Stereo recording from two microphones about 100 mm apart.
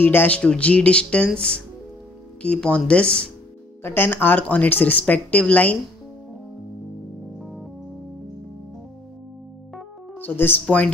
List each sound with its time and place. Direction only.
0.0 s speech: 20° left (ahead or behind)
3.8 s speech: 20° left (ahead or behind)
7.3 s keyboard: centre (ahead or behind)
10.1 s speech: 20° left (ahead or behind)